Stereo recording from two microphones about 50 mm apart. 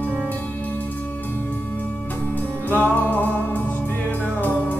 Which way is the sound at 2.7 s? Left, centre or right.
Left.